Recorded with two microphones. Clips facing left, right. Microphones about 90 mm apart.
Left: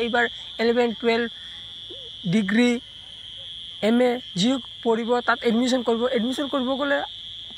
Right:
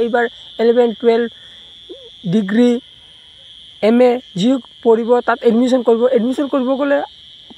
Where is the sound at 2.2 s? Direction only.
45° right (ahead or behind).